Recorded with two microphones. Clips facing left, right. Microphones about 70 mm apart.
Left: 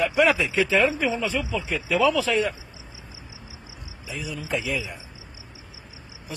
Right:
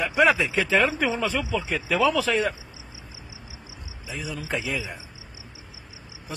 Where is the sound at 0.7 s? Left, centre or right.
Right.